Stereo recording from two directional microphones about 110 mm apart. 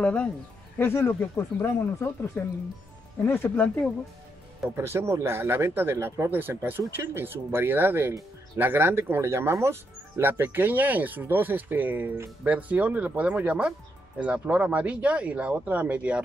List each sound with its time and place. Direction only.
0.0 s speech: 10° left (ahead or behind)
4.7 s speech: 20° right (ahead or behind)